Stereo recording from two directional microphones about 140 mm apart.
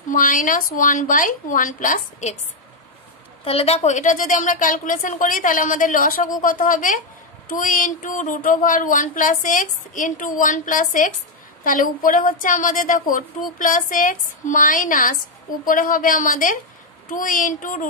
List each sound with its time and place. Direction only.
0.1 s speech: 70° left (ahead or behind)
3.4 s speech: 45° left (ahead or behind); by 17.8 s 70° left (ahead or behind)